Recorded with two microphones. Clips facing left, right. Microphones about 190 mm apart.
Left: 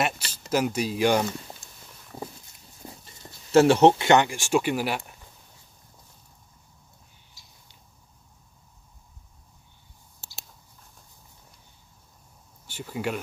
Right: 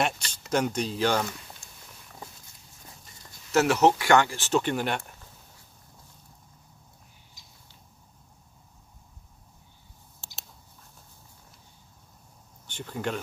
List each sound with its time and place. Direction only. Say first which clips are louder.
0.0 s speech: even; 5° left (ahead or behind)
2.1 s a sound: left 8 dB; 35° left (ahead or behind)
2.8 s clip-clop: left 9 dB; 30° left (ahead or behind)
3.2 s speech: left 6 dB; 30° left (ahead or behind); by 5.1 s 5° left (ahead or behind)
10.2 s a sound: left 1 dB; centre (ahead or behind)
12.6 s speech: left 2 dB; 10° left (ahead or behind)